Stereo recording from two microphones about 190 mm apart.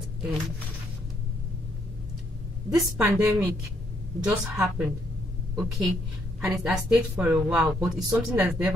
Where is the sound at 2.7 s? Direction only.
15° right (ahead or behind).